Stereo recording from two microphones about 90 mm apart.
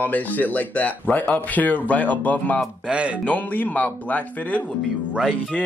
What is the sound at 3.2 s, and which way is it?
Speech, 20° left (ahead or behind).